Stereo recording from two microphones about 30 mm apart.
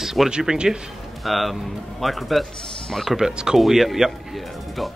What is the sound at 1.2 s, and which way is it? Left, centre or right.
Speech, centre.